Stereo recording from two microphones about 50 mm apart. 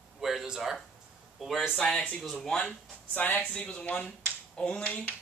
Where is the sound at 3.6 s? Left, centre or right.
Left.